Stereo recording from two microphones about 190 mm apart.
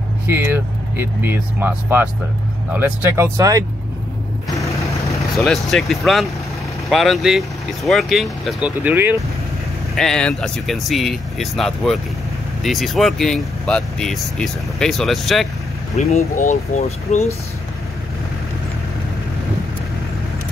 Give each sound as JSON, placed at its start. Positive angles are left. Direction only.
{"t": 0.3, "sound": "speech", "side_deg": -10}
{"t": 4.6, "sound": "vehicle", "side_deg": 15}
{"t": 5.4, "sound": "speech", "side_deg": 0}
{"t": 9.9, "sound": "speech", "side_deg": 5}
{"t": 16.0, "sound": "speech", "side_deg": 35}